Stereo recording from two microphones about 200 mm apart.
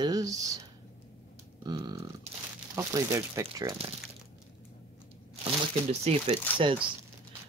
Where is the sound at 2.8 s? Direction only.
15° right (ahead or behind).